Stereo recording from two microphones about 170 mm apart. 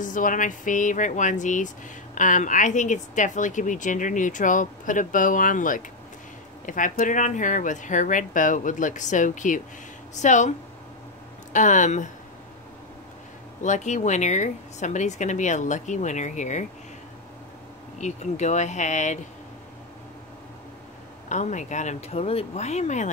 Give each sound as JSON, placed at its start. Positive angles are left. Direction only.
{"t": 0.0, "sound": "speech", "side_deg": 50}
{"t": 11.5, "sound": "speech", "side_deg": 45}
{"t": 13.6, "sound": "speech", "side_deg": 45}
{"t": 17.9, "sound": "speech", "side_deg": 45}
{"t": 21.3, "sound": "speech", "side_deg": 45}